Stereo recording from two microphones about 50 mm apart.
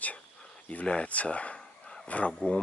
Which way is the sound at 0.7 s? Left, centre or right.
Left.